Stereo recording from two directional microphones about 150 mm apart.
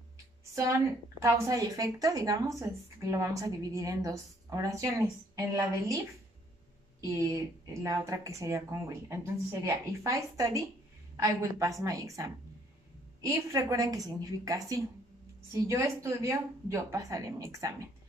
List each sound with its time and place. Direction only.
1.2 s a woman's voice: 20° right (ahead or behind)